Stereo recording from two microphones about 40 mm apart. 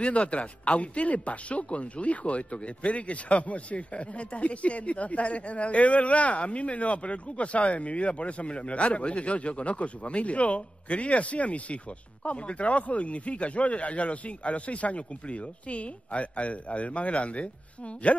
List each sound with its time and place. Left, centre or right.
0.0 s speech: left